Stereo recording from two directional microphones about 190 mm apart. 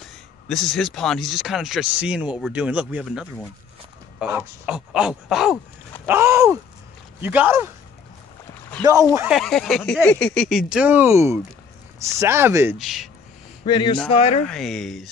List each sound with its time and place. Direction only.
0.5 s speech: centre (ahead or behind)
6.0 s speech: 10° right (ahead or behind)
9.3 s speech: centre (ahead or behind)
10.7 s speech: 10° right (ahead or behind)
12.7 s speech: centre (ahead or behind)
13.7 s speech: 25° left (ahead or behind)
14.4 s speech: centre (ahead or behind)